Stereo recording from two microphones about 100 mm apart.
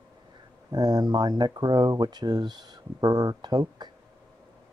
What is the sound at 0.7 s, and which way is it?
Speech, 45° right (ahead or behind).